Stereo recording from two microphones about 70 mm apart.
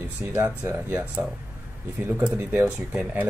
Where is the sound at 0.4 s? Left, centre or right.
Right.